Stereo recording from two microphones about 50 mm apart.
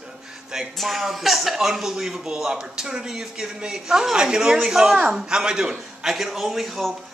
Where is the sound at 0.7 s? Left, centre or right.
Centre.